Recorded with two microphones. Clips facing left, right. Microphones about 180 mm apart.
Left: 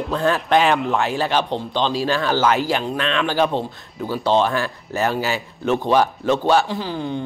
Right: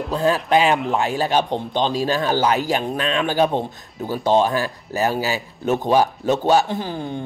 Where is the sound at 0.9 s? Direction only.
40° right (ahead or behind).